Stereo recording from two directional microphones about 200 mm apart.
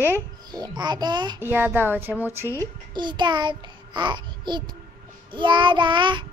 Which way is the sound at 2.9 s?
20° right (ahead or behind).